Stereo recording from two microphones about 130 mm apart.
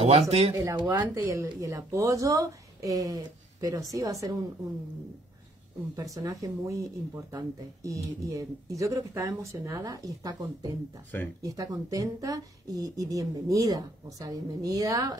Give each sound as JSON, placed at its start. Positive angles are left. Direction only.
{"t": 0.0, "sound": "speech", "side_deg": -50}
{"t": 0.5, "sound": "speech", "side_deg": -30}
{"t": 6.1, "sound": "speech", "side_deg": -25}